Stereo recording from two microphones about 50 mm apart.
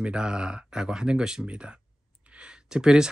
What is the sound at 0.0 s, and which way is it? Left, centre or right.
Speech, centre.